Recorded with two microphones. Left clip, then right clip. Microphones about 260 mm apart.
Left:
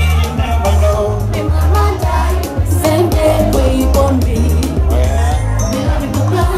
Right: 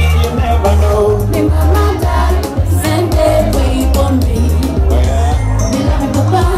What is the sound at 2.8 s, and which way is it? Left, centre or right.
Music, left.